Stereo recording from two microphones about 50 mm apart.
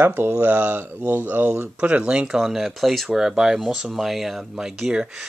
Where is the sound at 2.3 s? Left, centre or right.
Centre.